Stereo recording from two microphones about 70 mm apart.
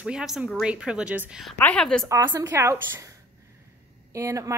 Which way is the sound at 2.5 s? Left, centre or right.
Right.